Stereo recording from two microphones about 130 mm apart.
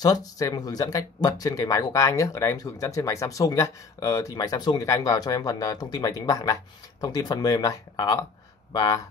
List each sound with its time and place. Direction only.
0.0 s speech: 30° left (ahead or behind)